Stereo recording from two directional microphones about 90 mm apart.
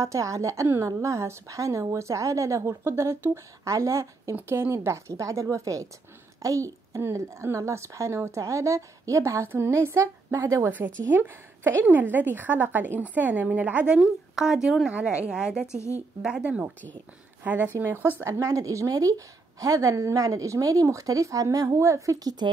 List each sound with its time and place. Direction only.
0.0 s a woman's voice: 35° right (ahead or behind)
10.7 s a woman's voice: 25° right (ahead or behind)
13.9 s a woman's voice: 5° right (ahead or behind); by 18.1 s 25° right (ahead or behind)
18.2 s a woman's voice: 35° right (ahead or behind)